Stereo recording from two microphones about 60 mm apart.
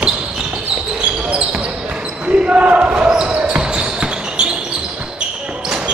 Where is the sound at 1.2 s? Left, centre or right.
Centre.